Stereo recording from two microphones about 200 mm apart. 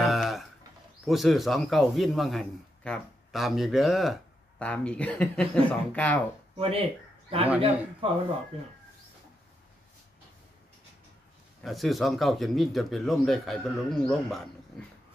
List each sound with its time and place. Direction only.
0.0 s a sound: centre (ahead or behind)
1.0 s a man's voice: centre (ahead or behind)
6.5 s speech: 30° right (ahead or behind)
11.6 s a man's voice: centre (ahead or behind)